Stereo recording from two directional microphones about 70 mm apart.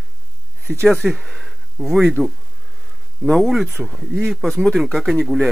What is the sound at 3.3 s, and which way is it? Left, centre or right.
Speech, centre.